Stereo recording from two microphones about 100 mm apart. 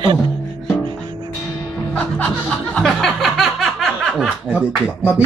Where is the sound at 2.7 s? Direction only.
5° left (ahead or behind).